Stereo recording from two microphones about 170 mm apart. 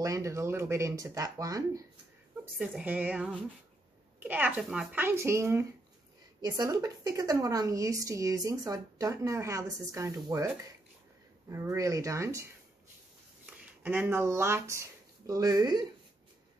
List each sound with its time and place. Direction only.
0.0 s a woman's voice: 20° right (ahead or behind)
2.7 s a woman's voice: 10° right (ahead or behind)
11.4 s speech: 20° right (ahead or behind)
13.6 s speech: 10° right (ahead or behind)